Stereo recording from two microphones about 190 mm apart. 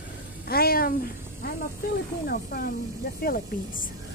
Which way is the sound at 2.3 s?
50° left (ahead or behind).